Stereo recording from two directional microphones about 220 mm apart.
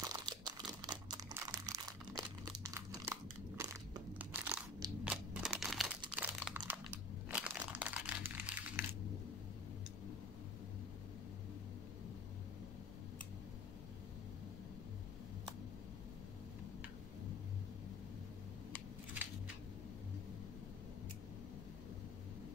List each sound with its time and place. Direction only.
0.0 s crumpling: 20° right (ahead or behind)